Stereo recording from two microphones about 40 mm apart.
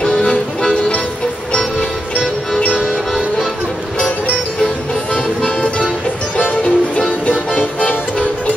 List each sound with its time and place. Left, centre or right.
0.0 s music: left
6.3 s music: left